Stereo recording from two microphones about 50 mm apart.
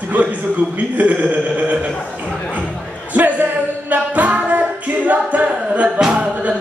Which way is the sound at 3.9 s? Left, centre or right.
Right.